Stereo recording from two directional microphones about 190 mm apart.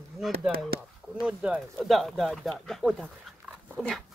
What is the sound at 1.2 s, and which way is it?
Speech, 5° right (ahead or behind).